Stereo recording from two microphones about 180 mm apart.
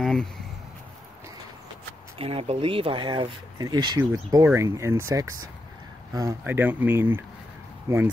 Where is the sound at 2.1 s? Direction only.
30° right (ahead or behind).